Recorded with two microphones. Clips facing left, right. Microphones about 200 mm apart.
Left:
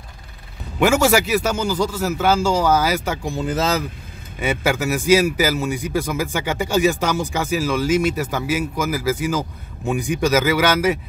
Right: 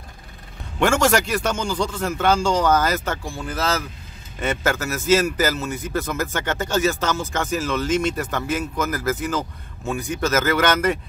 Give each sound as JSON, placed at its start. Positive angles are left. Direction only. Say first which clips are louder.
{"t": 0.7, "sound": "a man's voice", "louder": "left 2 dB", "side_deg": 5}
{"t": 3.3, "sound": "speech", "louder": "left 5 dB", "side_deg": 20}
{"t": 4.4, "sound": "a man's voice", "louder": "left 2 dB", "side_deg": 10}